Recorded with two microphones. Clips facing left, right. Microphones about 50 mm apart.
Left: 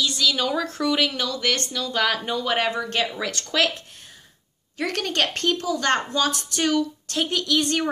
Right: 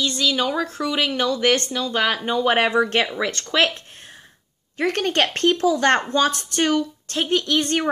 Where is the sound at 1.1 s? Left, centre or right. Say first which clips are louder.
Right 6 dB; right.